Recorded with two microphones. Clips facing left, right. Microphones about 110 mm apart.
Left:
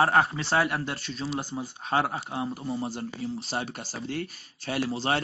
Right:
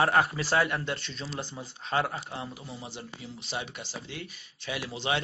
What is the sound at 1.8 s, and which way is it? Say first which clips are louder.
Speech: left 2 dB; 50° left (ahead or behind).